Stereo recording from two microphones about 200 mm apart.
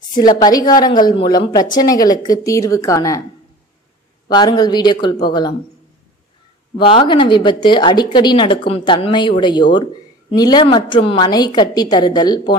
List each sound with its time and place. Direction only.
0.1 s speech: 20° left (ahead or behind)
4.3 s speech: 20° left (ahead or behind)
6.8 s speech: 25° left (ahead or behind)